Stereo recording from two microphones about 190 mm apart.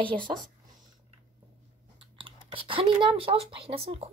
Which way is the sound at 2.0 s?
25° right (ahead or behind).